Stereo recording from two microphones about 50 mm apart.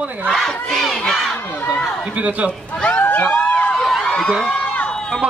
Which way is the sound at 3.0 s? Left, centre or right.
Left.